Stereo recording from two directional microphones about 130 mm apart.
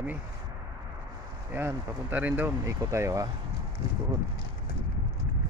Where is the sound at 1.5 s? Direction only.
15° right (ahead or behind).